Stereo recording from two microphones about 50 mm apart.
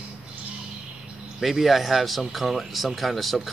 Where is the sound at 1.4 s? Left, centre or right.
Centre.